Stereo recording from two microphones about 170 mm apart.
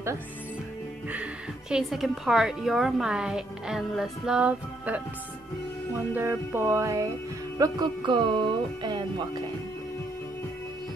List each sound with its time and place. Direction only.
1.1 s a woman's voice: 5° right (ahead or behind)
6.1 s music: 15° right (ahead or behind)
7.5 s speech: 25° right (ahead or behind)